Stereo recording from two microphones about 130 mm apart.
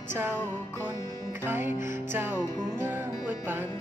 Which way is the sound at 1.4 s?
15° right (ahead or behind).